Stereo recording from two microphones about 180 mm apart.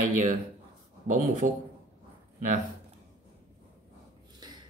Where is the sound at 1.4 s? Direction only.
45° right (ahead or behind).